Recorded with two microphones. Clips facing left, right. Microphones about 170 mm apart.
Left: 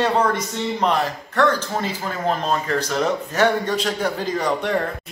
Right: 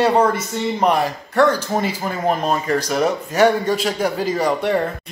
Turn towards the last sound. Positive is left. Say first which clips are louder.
# right 3 dB
turn(degrees=-5)  # may be behind; listen again after turning